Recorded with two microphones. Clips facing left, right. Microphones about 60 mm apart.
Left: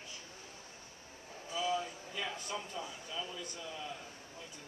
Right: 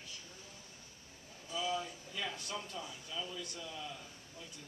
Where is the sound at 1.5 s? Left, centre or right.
Centre.